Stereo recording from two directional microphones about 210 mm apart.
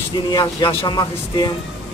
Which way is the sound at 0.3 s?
20° left (ahead or behind).